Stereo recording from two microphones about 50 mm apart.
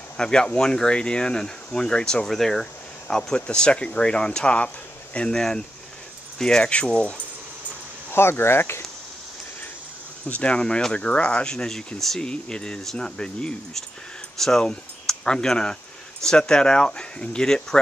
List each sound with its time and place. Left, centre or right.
0.2 s speech: centre
8.1 s speech: left
10.2 s speech: left